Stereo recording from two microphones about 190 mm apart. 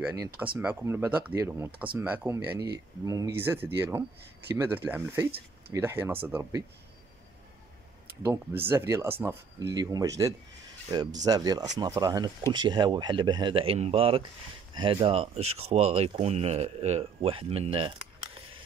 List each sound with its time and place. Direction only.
0.0 s speech: 10° right (ahead or behind)
8.6 s speech: 15° right (ahead or behind)